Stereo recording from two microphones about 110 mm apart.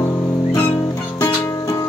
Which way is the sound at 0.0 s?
20° left (ahead or behind).